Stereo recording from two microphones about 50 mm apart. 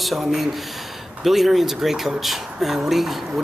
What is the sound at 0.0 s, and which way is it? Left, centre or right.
A man's voice, centre.